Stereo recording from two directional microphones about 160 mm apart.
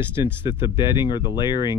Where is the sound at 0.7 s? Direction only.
30° left (ahead or behind).